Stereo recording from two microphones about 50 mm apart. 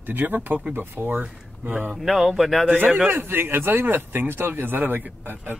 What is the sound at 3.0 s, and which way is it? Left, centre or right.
Speech, right.